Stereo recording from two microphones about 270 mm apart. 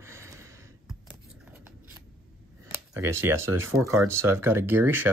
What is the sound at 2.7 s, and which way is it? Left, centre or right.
Speech, centre.